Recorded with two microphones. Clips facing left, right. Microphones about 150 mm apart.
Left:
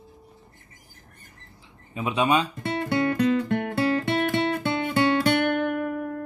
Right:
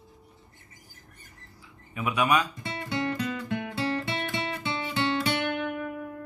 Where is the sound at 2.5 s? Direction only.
55° left (ahead or behind).